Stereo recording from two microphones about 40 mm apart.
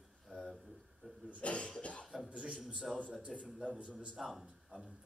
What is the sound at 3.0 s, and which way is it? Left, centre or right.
Speech, right.